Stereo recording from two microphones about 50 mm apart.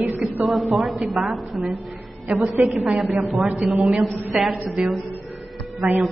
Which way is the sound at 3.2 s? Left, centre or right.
Centre.